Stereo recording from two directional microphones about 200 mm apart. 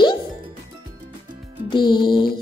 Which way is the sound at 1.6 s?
20° left (ahead or behind).